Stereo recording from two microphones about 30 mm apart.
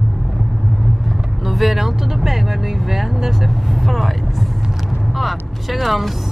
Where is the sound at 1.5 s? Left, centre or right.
Centre.